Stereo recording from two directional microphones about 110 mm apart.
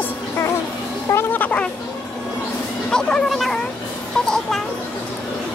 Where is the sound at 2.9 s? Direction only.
5° left (ahead or behind).